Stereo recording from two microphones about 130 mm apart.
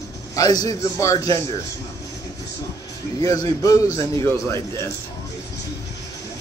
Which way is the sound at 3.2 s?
25° left (ahead or behind).